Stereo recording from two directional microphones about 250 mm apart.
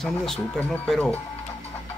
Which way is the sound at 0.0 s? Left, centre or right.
Centre.